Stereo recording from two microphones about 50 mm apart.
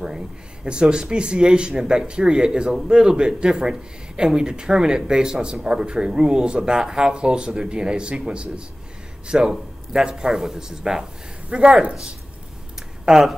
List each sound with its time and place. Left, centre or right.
0.7 s speech: centre
13.0 s speech: centre